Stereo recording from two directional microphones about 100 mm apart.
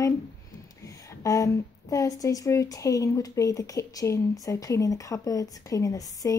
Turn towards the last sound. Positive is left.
turn(degrees=35)  # may be behind; listen again after turning